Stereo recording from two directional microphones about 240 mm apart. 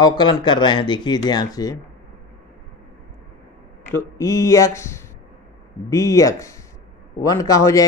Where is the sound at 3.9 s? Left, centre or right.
Centre.